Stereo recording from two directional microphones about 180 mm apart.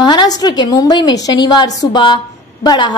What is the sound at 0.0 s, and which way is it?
A woman's voice, 25° left (ahead or behind).